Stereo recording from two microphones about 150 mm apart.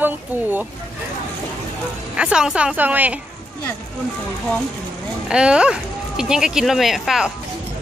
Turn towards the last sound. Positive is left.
turn(degrees=0)  # may be behind; listen again after turning